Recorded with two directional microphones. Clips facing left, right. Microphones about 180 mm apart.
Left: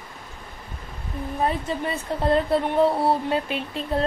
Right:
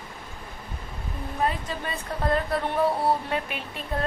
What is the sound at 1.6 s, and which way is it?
Speech, 25° left (ahead or behind).